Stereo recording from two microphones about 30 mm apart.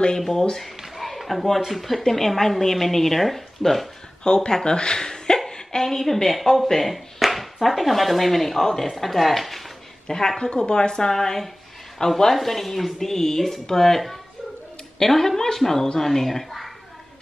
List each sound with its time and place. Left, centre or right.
0.2 s speech: centre
0.6 s a sound: centre
1.7 s speech: centre
4.2 s speech: left
5.5 s a sound: left
5.9 s speech: centre
6.5 s speech: centre
10.0 s speech: left
12.0 s speech: left
12.4 s speech: centre